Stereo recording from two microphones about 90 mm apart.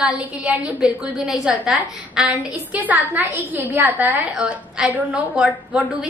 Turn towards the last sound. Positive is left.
turn(degrees=-20)  # may be behind; listen again after turning